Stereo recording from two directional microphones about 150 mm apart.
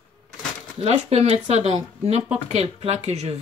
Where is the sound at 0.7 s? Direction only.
45° right (ahead or behind).